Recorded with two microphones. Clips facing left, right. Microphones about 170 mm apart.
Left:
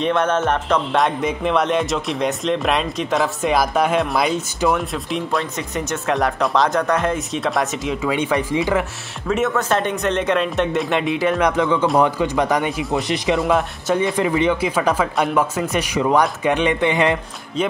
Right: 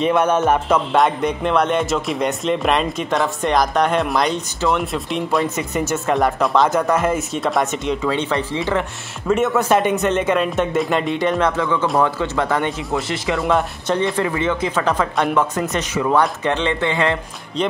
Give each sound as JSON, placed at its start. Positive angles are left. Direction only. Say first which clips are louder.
{"t": 0.0, "sound": "music", "louder": "right 2 dB", "side_deg": -10}
{"t": 9.3, "sound": "music", "louder": "right 3 dB", "side_deg": 0}
{"t": 11.4, "sound": "speech", "louder": "left 2 dB", "side_deg": 15}
{"t": 13.4, "sound": "speech", "louder": "even", "side_deg": 0}
{"t": 15.1, "sound": "music", "louder": "even", "side_deg": 5}
{"t": 15.7, "sound": "speech", "louder": "left 2 dB", "side_deg": 15}